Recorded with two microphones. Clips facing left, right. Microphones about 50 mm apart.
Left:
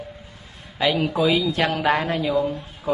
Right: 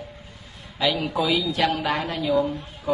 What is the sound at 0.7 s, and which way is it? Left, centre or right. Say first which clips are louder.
A woman's voice: left 3 dB; left.